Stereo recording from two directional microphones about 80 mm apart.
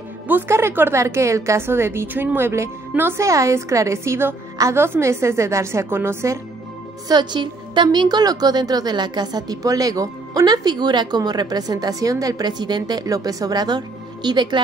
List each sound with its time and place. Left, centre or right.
0.3 s a woman's voice: right
3.2 s a woman's voice: right
7.1 s a woman's voice: right